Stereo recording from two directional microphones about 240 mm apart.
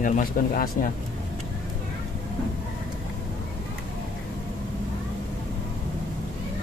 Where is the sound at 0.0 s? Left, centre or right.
Left.